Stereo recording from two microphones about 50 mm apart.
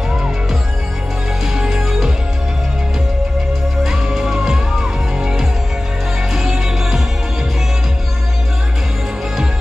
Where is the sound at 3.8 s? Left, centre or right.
Centre.